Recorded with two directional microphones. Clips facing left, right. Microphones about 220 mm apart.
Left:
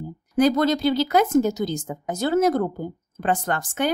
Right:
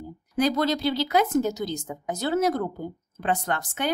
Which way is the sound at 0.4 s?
50° left (ahead or behind).